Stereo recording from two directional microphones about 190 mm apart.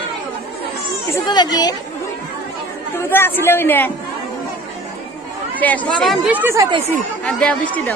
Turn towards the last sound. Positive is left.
turn(degrees=5)  # may be behind; listen again after turning